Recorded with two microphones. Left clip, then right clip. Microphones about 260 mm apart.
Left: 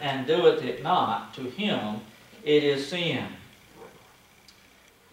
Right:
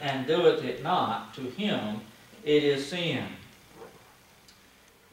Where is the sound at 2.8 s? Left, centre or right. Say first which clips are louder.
Left 2 dB; centre.